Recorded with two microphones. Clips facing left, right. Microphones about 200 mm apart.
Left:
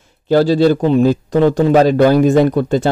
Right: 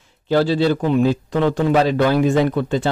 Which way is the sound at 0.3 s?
40° left (ahead or behind).